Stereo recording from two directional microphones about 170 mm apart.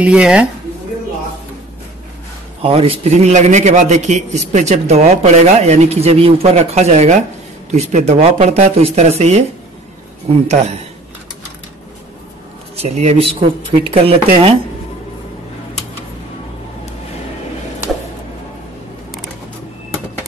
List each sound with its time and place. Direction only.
0.0 s speech: 5° right (ahead or behind)
2.6 s a man's voice: 35° right (ahead or behind)
12.7 s a man's voice: 40° right (ahead or behind)